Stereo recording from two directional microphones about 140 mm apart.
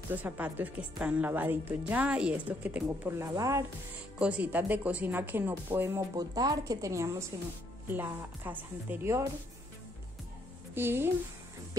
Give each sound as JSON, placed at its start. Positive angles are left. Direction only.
{"t": 0.1, "sound": "a woman's voice", "side_deg": -10}
{"t": 4.2, "sound": "a woman's voice", "side_deg": -10}
{"t": 6.1, "sound": "a woman's voice", "side_deg": -25}
{"t": 10.7, "sound": "a woman's voice", "side_deg": -15}